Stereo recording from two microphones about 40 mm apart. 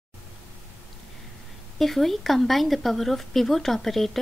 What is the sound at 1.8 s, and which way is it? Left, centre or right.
Speech, centre.